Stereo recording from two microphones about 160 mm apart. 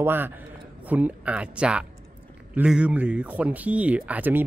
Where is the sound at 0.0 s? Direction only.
15° right (ahead or behind).